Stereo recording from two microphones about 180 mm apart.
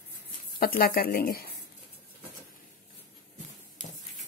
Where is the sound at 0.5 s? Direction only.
55° left (ahead or behind).